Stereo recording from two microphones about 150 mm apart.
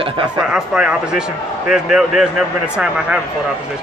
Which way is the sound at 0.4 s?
5° right (ahead or behind).